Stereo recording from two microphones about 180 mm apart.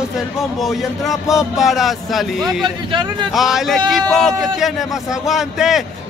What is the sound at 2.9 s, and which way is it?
Speech, 25° right (ahead or behind).